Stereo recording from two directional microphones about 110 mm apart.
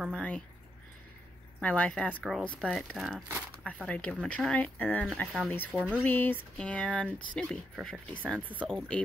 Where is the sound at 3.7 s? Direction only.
10° left (ahead or behind).